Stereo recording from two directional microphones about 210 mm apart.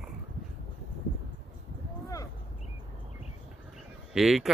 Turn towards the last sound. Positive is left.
turn(degrees=0)  # may be behind; listen again after turning